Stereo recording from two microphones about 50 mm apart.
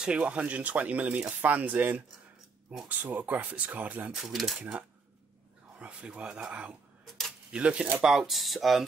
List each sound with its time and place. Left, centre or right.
0.0 s speech: right
4.1 s speech: centre
4.6 s speech: right
7.1 s a sound: centre
7.5 s speech: right
8.0 s speech: centre